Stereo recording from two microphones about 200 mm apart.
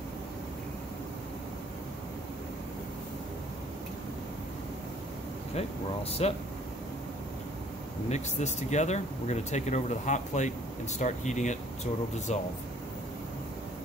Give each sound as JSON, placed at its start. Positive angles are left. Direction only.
{"t": 6.2, "sound": "speech", "side_deg": 30}
{"t": 8.1, "sound": "speech", "side_deg": 35}